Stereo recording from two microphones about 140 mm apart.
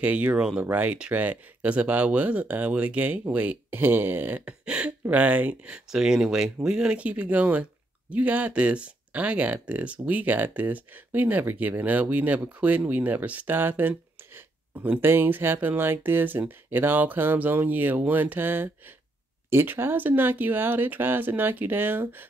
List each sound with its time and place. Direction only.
0.0 s speech: 10° right (ahead or behind)